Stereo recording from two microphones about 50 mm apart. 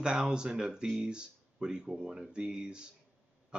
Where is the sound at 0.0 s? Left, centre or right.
Centre.